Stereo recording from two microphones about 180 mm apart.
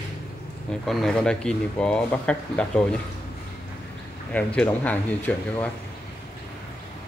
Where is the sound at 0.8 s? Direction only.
Centre (ahead or behind).